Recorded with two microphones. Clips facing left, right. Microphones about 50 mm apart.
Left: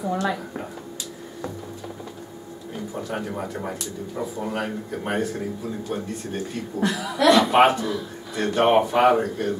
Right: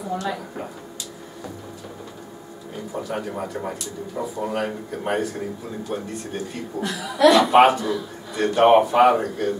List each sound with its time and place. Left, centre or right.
0.2 s a man's voice: centre
3.0 s a man's voice: centre